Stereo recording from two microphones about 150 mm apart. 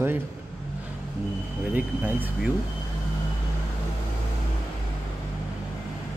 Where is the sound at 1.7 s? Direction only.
10° right (ahead or behind).